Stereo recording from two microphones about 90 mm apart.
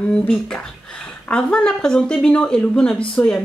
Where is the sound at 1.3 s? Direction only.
10° left (ahead or behind).